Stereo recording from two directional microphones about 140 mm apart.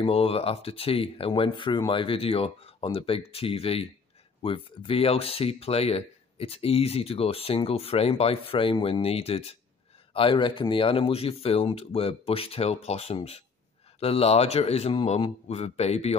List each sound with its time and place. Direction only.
0.0 s speech: 45° left (ahead or behind)